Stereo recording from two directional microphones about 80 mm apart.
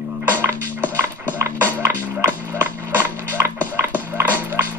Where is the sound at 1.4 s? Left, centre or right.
Right.